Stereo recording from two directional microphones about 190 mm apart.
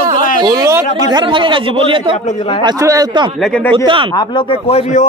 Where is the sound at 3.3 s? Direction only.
5° left (ahead or behind).